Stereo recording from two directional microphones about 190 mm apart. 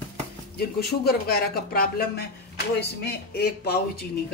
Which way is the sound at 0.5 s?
55° left (ahead or behind).